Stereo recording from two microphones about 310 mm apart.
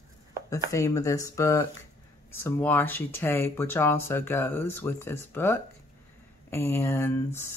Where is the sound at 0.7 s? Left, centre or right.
Centre.